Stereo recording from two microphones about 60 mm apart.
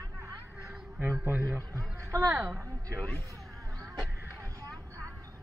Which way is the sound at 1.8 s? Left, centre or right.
Right.